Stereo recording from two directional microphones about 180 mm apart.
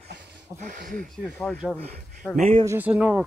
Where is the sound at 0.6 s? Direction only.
45° right (ahead or behind).